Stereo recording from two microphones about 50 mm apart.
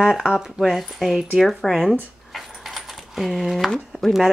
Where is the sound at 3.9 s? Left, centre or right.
Left.